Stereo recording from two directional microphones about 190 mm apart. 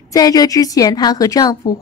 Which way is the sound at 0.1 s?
20° left (ahead or behind).